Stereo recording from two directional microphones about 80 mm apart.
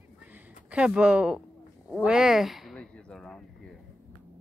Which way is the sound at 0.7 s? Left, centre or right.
Centre.